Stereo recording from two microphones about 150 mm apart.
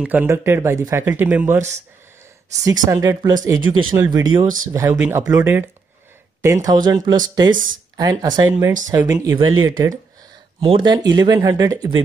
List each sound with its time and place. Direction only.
0.0 s speech: 10° right (ahead or behind)
2.6 s speech: 25° right (ahead or behind)